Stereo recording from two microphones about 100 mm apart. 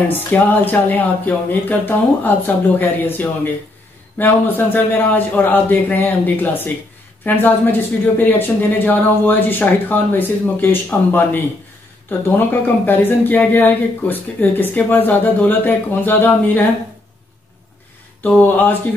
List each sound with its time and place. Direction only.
0.1 s speech: 20° left (ahead or behind)